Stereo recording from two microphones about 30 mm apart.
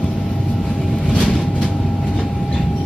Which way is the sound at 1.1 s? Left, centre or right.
Left.